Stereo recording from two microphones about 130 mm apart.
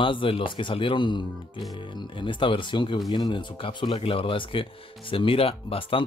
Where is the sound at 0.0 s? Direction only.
40° left (ahead or behind).